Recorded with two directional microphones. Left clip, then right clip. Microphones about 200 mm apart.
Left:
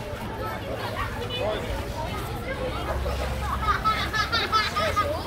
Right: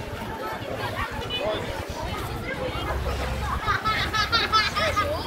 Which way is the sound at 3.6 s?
55° left (ahead or behind).